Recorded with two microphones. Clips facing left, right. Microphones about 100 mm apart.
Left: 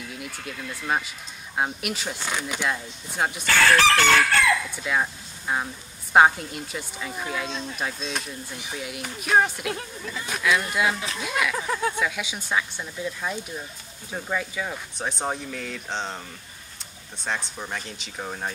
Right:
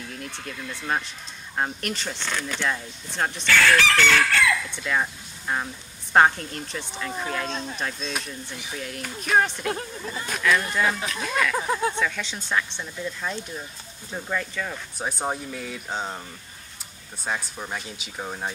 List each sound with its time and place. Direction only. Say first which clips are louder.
0.5 s a woman's voice: left 1 dB; 5° left (ahead or behind)
3.4 s chicken: left 1 dB; 40° left (ahead or behind)
4.6 s a woman's voice: even; 5° left (ahead or behind)
9.7 s speech: right 2 dB; 35° right (ahead or behind)
10.2 s speech: right 1 dB; 5° left (ahead or behind)
11.5 s speech: right 2 dB; 20° right (ahead or behind)
12.0 s speech: even; 10° left (ahead or behind)
15.0 s speech: right 1 dB; 5° right (ahead or behind)
17.2 s a woman's voice: even; 5° right (ahead or behind)